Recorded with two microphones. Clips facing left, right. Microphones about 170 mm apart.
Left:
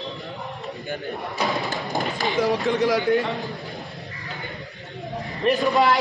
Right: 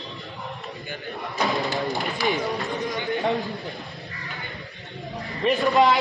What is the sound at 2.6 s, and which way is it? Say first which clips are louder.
Speech: left 8 dB; 90° left.